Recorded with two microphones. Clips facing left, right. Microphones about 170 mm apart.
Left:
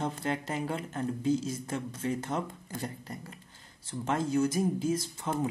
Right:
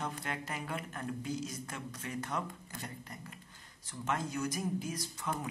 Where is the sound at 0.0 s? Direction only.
30° left (ahead or behind).